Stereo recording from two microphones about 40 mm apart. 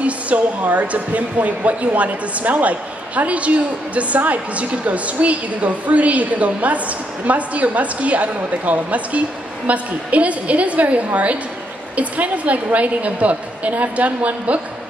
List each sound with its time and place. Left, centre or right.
0.0 s speech: right